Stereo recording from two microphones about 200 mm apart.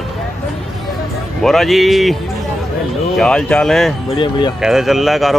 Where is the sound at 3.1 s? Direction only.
5° left (ahead or behind).